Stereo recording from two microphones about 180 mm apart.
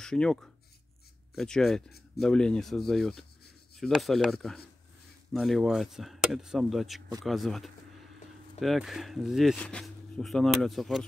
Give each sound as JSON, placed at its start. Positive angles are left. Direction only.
{"t": 0.0, "sound": "speech", "side_deg": 5}